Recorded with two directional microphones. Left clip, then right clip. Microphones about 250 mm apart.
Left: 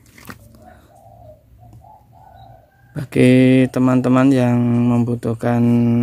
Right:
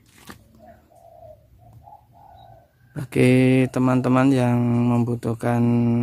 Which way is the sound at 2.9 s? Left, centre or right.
Centre.